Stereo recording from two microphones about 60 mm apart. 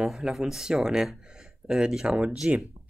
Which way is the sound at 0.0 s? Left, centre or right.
Centre.